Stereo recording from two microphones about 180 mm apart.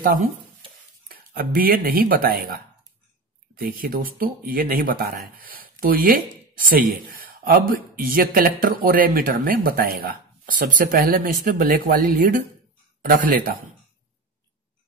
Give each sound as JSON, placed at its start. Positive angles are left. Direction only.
{"t": 0.0, "sound": "speech", "side_deg": -50}
{"t": 3.8, "sound": "speech", "side_deg": -55}